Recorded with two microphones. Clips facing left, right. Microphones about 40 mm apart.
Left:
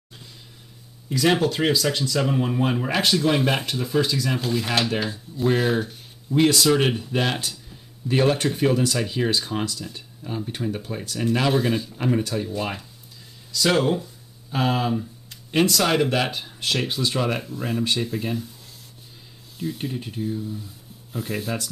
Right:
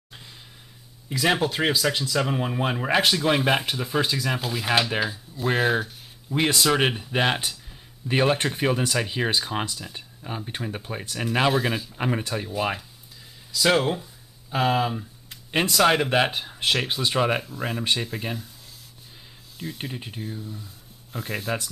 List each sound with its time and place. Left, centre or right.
1.0 s speech: centre
5.5 s speech: centre
11.5 s speech: centre
12.0 s speech: right
15.5 s speech: centre
17.4 s speech: centre
19.8 s speech: centre